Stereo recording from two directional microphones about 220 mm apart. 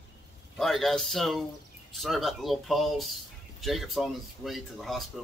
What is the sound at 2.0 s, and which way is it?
Speech, centre (ahead or behind).